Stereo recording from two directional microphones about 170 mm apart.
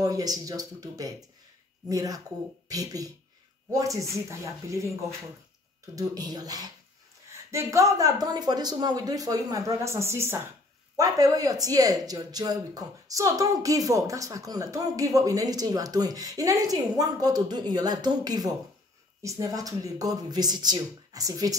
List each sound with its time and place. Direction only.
0.0 s speech: 20° right (ahead or behind)